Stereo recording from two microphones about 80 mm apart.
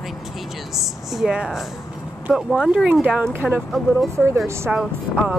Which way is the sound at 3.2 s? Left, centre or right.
Right.